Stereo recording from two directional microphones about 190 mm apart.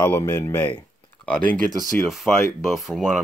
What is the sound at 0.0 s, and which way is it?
Speech, 10° left (ahead or behind).